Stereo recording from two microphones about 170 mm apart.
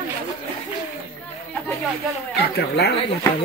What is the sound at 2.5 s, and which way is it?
Speech, 70° left (ahead or behind).